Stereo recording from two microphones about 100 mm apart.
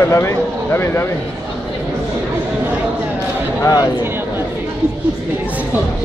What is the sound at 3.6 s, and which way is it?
Speech, 40° left (ahead or behind).